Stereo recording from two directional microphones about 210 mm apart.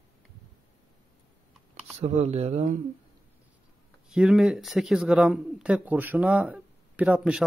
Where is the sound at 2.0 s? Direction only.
30° right (ahead or behind).